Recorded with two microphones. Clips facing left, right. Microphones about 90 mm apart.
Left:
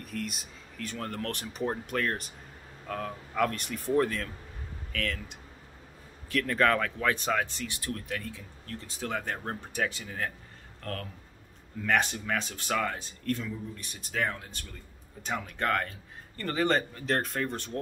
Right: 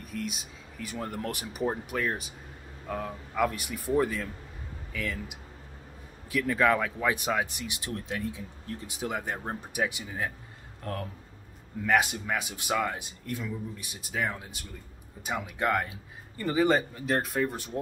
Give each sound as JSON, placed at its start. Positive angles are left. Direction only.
{"t": 0.0, "sound": "speech", "side_deg": 0}